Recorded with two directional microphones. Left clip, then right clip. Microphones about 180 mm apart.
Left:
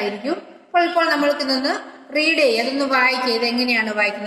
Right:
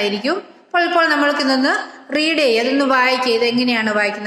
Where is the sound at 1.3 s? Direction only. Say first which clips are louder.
Right 4 dB; 40° right (ahead or behind).